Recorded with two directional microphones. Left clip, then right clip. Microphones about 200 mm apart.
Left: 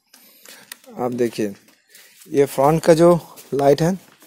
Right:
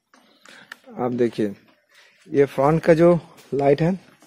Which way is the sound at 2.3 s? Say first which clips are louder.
Left 2 dB; 15° left (ahead or behind).